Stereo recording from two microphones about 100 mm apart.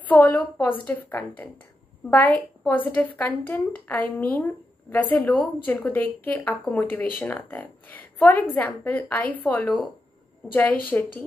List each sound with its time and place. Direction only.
0.0 s a woman's voice: 15° left (ahead or behind)